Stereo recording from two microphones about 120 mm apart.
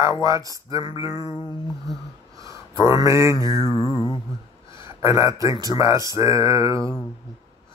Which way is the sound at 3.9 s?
35° left (ahead or behind).